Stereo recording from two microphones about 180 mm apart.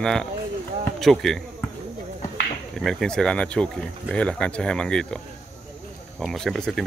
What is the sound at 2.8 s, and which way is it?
Speech, centre (ahead or behind).